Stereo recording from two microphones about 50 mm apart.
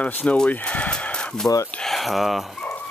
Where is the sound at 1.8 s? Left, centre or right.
Centre.